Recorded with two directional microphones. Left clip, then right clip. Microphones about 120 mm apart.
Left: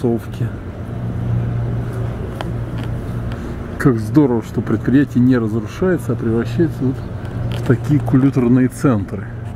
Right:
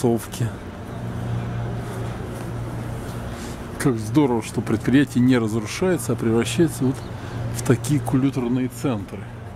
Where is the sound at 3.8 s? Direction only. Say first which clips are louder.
Left 6 dB; 35° right (ahead or behind).